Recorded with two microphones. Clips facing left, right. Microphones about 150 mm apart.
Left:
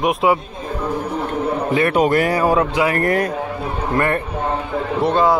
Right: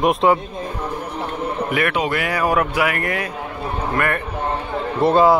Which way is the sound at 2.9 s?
40° left (ahead or behind).